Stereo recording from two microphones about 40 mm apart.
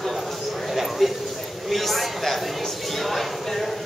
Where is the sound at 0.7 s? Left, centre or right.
Centre.